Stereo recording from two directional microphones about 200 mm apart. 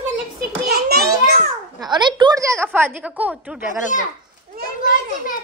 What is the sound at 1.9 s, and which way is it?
A child's voice, 20° right (ahead or behind).